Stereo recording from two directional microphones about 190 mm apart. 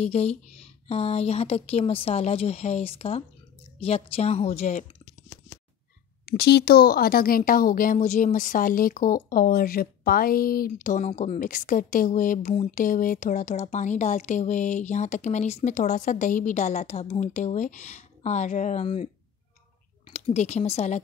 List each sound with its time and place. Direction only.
0.0 s speech: 35° left (ahead or behind)
6.2 s speech: 55° left (ahead or behind); by 19.0 s 35° left (ahead or behind)
20.1 s speech: 35° left (ahead or behind)